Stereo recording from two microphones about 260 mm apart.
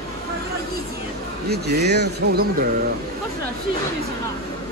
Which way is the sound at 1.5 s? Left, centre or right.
Right.